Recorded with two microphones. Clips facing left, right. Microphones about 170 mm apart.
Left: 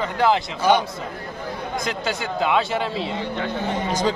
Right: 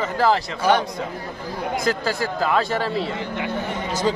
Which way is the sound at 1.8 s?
Centre (ahead or behind).